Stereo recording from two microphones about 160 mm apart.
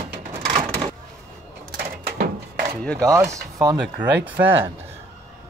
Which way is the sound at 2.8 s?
5° left (ahead or behind).